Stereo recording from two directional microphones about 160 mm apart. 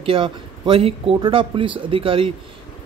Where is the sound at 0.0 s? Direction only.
35° right (ahead or behind).